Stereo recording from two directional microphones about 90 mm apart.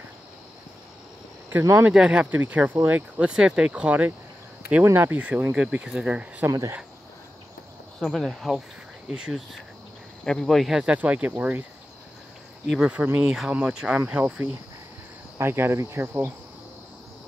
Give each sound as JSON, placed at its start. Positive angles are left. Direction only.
{"t": 1.6, "sound": "speech", "side_deg": -35}
{"t": 1.9, "sound": "speech", "side_deg": -10}
{"t": 2.3, "sound": "insect", "side_deg": -20}
{"t": 2.9, "sound": "speech", "side_deg": -10}
{"t": 4.8, "sound": "speech", "side_deg": -25}
{"t": 8.0, "sound": "speech", "side_deg": 0}
{"t": 10.2, "sound": "speech", "side_deg": 5}
{"t": 12.7, "sound": "speech", "side_deg": -10}
{"t": 15.3, "sound": "insect", "side_deg": -25}